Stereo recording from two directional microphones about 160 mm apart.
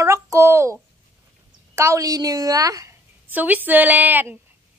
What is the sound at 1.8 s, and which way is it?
A woman's voice, 20° right (ahead or behind).